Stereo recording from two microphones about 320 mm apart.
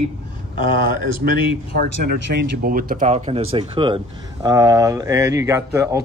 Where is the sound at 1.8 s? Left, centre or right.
Right.